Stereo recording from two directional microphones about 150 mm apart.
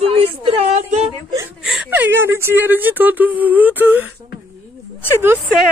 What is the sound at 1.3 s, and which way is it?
Speech, 15° right (ahead or behind).